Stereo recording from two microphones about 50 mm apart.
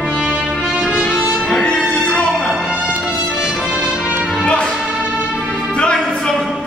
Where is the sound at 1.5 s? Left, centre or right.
Centre.